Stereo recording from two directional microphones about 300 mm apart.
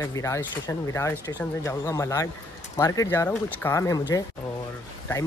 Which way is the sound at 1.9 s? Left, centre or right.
Centre.